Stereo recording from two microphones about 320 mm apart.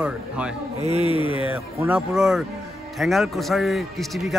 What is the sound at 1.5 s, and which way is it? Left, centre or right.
Speech, centre.